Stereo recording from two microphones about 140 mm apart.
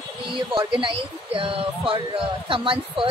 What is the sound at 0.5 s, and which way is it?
Music, 35° right (ahead or behind).